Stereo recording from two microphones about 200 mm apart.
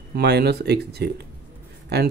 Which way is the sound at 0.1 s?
55° right (ahead or behind).